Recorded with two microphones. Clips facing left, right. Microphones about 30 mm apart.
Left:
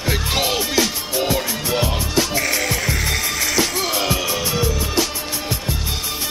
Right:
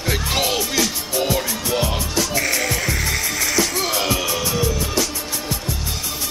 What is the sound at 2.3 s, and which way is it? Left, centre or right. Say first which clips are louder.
Music: even; centre.